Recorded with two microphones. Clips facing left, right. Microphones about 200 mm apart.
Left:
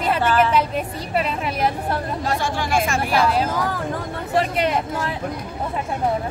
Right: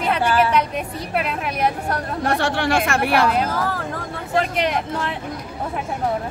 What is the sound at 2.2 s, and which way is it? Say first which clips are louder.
Speech: right 6 dB; 65° right (ahead or behind).